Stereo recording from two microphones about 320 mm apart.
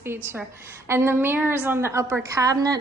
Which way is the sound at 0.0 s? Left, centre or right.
Centre.